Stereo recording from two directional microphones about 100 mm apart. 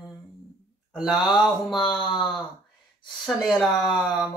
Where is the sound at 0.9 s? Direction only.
Centre (ahead or behind).